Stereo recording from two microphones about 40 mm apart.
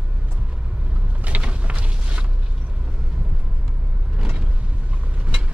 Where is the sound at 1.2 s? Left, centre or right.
Right.